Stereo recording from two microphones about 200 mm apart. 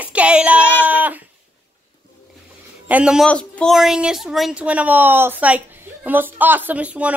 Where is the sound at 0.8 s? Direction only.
10° right (ahead or behind).